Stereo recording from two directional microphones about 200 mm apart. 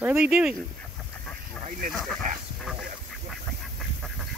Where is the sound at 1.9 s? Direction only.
Centre (ahead or behind).